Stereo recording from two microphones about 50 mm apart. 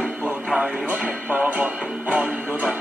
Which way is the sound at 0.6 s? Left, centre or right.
Right.